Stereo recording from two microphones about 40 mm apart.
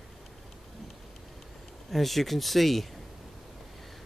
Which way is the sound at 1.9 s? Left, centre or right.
Centre.